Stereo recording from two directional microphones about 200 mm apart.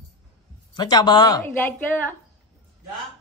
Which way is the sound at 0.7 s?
20° left (ahead or behind).